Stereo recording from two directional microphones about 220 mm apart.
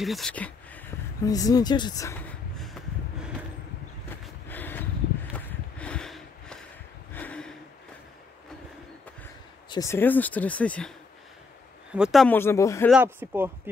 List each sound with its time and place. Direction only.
0.0 s speech: centre (ahead or behind)
4.5 s a sound: 10° left (ahead or behind)
9.7 s speech: 15° left (ahead or behind)
11.9 s speech: centre (ahead or behind)
12.9 s speech: 10° right (ahead or behind)